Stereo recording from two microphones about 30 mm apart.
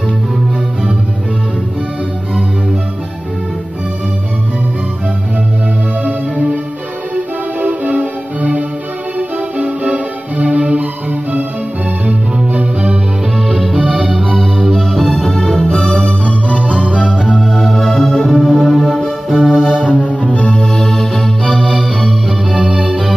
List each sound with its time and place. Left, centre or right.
7.2 s music: right
14.7 s music: centre
15.0 s music: centre
15.3 s music: centre
15.7 s organ: left
16.1 s music: left
17.5 s music: centre
19.2 s music: centre
19.6 s music: right
19.9 s music: left
20.8 s organ: centre
22.8 s music: centre